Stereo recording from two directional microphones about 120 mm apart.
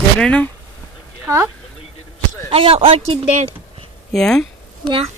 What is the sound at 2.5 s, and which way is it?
Speech, 50° right (ahead or behind).